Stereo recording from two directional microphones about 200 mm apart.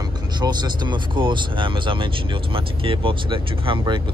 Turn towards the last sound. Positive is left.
turn(degrees=-25)  # may be behind; listen again after turning